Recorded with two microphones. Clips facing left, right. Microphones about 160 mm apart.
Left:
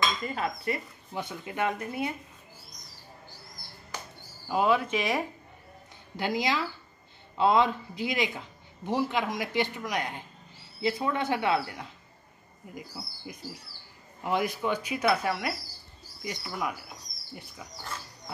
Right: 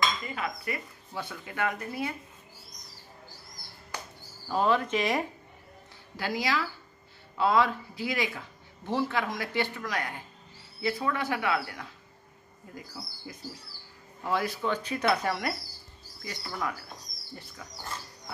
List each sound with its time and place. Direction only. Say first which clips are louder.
0.3 s cutlery: left 3 dB; 35° left (ahead or behind)
1.1 s speech: left 2 dB; 20° left (ahead or behind)
4.5 s speech: left 1 dB; 10° left (ahead or behind)
6.1 s speech: left 1 dB; 20° left (ahead or behind)